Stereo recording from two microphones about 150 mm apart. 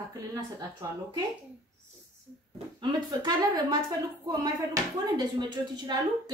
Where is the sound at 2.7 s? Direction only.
25° right (ahead or behind).